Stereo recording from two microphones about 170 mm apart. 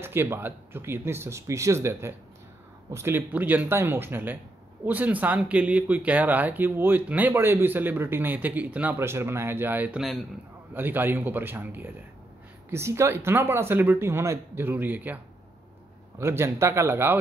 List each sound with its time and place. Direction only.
0.0 s speech: 15° right (ahead or behind)
16.2 s speech: 15° right (ahead or behind)